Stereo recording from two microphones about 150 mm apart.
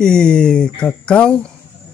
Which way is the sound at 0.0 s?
5° left (ahead or behind).